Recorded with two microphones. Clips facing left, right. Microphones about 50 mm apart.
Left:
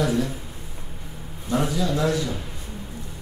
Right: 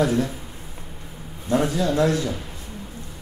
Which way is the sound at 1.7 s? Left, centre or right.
Right.